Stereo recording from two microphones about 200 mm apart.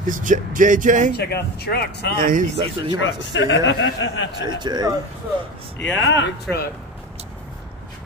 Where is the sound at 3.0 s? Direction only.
65° left (ahead or behind).